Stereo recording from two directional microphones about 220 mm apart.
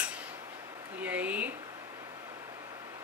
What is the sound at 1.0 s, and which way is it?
Speech, 5° right (ahead or behind).